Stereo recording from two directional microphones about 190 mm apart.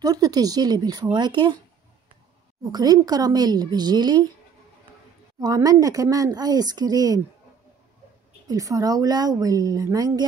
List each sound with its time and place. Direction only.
0.0 s speech: 20° right (ahead or behind)
2.7 s speech: 20° right (ahead or behind)
5.4 s speech: 20° right (ahead or behind)
8.5 s speech: 15° right (ahead or behind)